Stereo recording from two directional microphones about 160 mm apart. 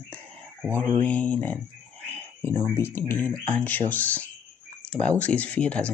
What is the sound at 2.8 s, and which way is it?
Speech, 15° left (ahead or behind).